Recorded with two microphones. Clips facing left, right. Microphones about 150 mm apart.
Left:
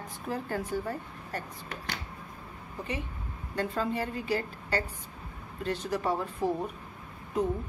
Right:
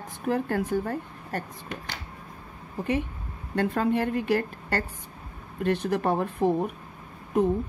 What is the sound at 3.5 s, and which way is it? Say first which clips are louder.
A woman's voice: right 6 dB; 60° right (ahead or behind).